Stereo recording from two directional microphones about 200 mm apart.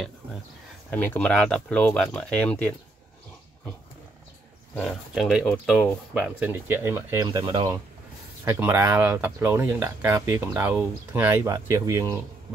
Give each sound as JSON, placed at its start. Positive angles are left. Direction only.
{"t": 0.8, "sound": "speech", "side_deg": 10}
{"t": 4.7, "sound": "speech", "side_deg": 0}